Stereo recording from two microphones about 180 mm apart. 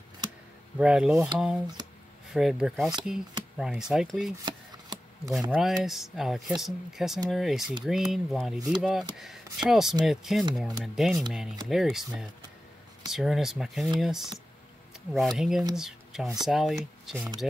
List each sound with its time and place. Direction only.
0.7 s speech: 5° right (ahead or behind)
2.3 s speech: centre (ahead or behind)
4.5 s chopping: 25° right (ahead or behind)
5.5 s speech: centre (ahead or behind)